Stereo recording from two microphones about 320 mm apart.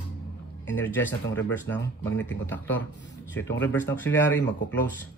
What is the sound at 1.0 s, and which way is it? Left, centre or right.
Speech, left.